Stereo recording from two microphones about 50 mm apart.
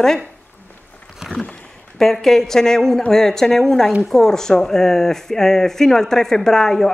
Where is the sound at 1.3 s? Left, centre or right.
Left.